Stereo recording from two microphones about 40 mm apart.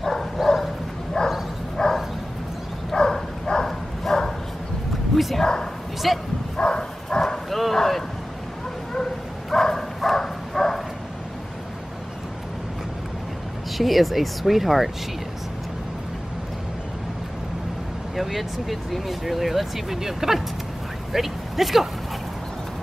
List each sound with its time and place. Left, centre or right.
0.0 s dog: centre
1.1 s bow-wow: centre
3.0 s a sound: centre
5.1 s bow-wow: centre
5.4 s bow-wow: centre
6.0 s bow-wow: centre
6.5 s a sound: left
7.4 s bow-wow: centre
9.5 s a sound: centre
13.7 s speech: centre
18.1 s speech: centre